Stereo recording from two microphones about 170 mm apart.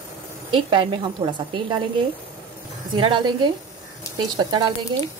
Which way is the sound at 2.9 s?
30° right (ahead or behind).